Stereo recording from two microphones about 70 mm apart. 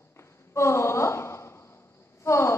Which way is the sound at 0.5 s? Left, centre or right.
Left.